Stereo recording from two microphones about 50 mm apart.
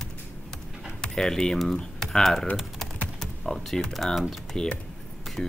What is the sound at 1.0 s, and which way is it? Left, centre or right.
Speech, centre.